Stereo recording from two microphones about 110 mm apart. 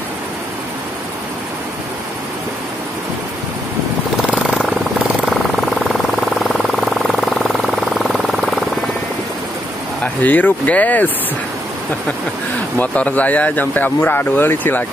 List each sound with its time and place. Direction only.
4.2 s jackhammer: 5° right (ahead or behind)
5.9 s vehicle: centre (ahead or behind)
10.2 s speech: 15° left (ahead or behind)
12.7 s speech: 15° left (ahead or behind)